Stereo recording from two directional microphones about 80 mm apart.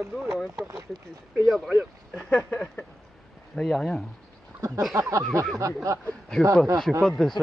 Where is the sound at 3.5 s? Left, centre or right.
Centre.